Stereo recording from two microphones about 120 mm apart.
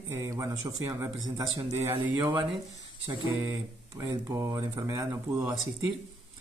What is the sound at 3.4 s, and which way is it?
Speech, 20° right (ahead or behind).